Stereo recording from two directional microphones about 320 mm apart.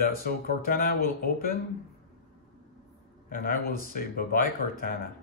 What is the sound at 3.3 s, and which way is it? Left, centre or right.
Speech, left.